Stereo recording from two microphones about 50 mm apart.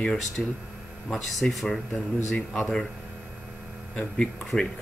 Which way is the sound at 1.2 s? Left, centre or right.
Centre.